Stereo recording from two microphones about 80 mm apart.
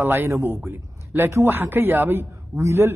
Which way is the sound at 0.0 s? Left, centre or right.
Right.